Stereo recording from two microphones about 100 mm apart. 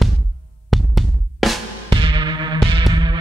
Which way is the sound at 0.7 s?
Centre (ahead or behind).